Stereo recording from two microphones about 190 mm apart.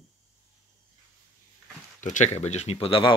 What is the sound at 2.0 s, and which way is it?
Speech, 40° left (ahead or behind).